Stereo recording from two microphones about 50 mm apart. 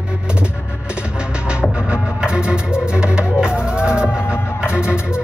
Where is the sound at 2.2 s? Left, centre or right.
Centre.